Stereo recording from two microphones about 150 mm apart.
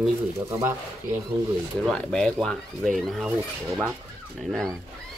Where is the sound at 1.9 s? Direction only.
5° left (ahead or behind).